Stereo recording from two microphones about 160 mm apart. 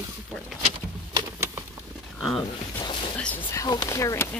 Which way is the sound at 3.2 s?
10° left (ahead or behind).